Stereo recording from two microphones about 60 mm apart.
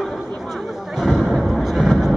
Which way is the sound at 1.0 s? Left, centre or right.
Centre.